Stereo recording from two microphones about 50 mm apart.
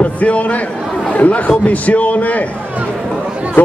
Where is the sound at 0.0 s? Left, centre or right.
Left.